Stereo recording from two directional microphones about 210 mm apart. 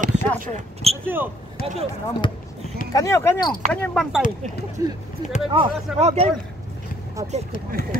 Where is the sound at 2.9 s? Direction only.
15° left (ahead or behind).